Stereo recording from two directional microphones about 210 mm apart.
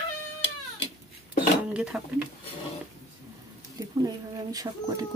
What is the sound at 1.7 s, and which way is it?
Speech, 5° right (ahead or behind).